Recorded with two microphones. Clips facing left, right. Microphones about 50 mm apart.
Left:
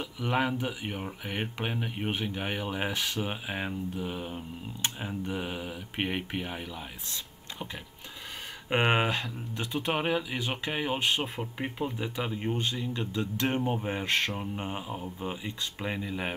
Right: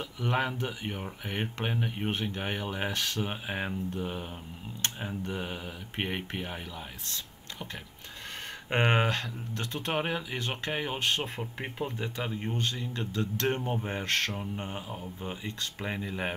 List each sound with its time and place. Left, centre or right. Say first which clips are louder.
0.0 s speech: left 1 dB; centre
8.6 s speech: left 1 dB; centre
10.0 s speech: left 3 dB; centre
10.4 s speech: left 1 dB; centre
11.0 s speech: even; centre
11.3 s speech: left 2 dB; centre
14.8 s speech: left 3 dB; centre
15.8 s speech: even; centre